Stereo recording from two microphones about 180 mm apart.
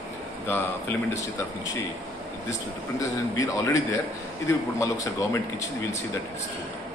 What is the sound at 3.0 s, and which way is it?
A man's voice, 20° left (ahead or behind).